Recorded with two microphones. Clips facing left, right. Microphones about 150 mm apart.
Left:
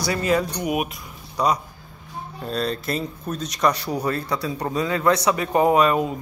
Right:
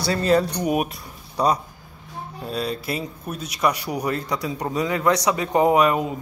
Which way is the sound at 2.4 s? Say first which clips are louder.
Left 1 dB; 10° right (ahead or behind).